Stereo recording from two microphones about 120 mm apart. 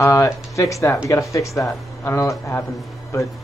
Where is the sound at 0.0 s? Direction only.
25° left (ahead or behind).